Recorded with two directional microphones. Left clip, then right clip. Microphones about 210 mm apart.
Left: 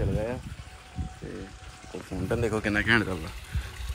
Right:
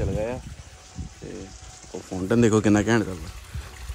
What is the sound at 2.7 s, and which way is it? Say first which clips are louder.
Speech: right 1 dB; 25° right (ahead or behind).